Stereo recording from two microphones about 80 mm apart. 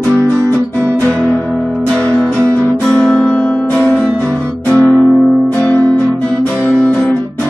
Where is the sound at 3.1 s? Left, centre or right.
Centre.